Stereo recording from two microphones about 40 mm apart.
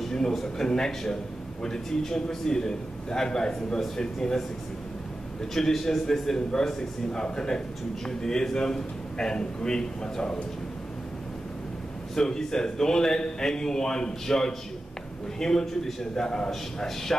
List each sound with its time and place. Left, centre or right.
0.0 s a man's voice: centre
5.5 s a man's voice: centre
12.2 s a man's voice: centre